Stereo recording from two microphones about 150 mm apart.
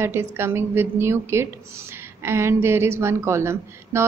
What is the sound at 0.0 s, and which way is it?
A woman's voice, 15° right (ahead or behind).